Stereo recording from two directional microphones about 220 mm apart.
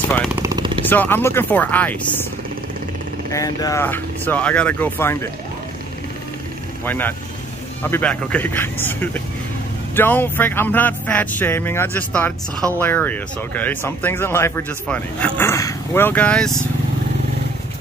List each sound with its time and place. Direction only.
0.3 s jackhammer: 15° right (ahead or behind)
0.8 s speech: 10° left (ahead or behind)
3.3 s speech: 15° left (ahead or behind)
6.8 s speech: 10° left (ahead or behind)